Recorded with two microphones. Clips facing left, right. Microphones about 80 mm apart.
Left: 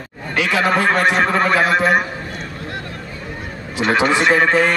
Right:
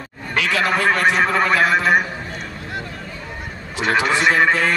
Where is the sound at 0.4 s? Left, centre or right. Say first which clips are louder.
Left 2 dB; left.